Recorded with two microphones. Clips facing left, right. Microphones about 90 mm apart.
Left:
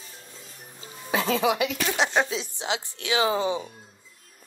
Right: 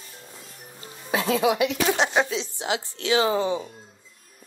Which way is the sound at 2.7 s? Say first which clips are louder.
Right 4 dB; 15° left (ahead or behind).